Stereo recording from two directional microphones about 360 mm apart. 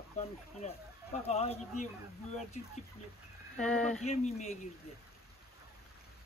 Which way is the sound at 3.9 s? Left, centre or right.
Centre.